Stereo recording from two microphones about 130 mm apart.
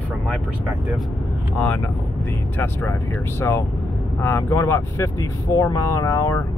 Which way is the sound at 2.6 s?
20° left (ahead or behind).